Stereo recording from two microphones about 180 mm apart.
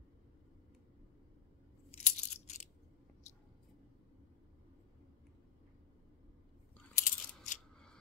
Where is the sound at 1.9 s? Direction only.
40° left (ahead or behind).